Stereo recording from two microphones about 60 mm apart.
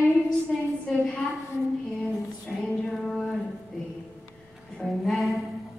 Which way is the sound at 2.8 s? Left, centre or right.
Centre.